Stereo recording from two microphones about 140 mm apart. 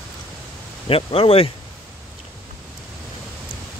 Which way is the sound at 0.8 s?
40° left (ahead or behind).